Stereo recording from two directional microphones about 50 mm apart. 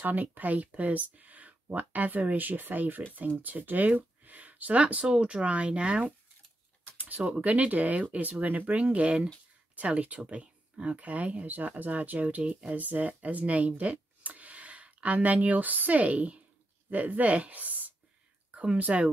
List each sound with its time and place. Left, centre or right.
0.0 s speech: right; by 6.1 s centre
7.0 s speech: right
18.5 s a sound: right
18.8 s speech: right